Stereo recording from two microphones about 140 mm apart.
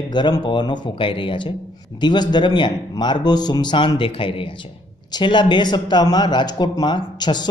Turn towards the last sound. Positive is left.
turn(degrees=30)  # may be behind; listen again after turning